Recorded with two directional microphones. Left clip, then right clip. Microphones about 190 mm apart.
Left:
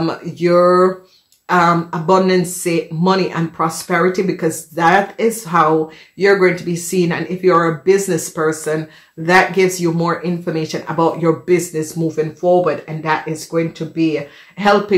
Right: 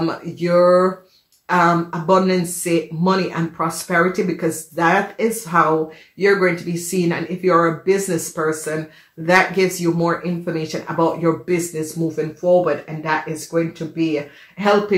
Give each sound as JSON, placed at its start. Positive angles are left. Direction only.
{"t": 0.0, "sound": "speech", "side_deg": 45}